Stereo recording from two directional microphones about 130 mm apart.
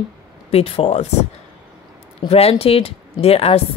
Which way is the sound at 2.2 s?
50° left (ahead or behind).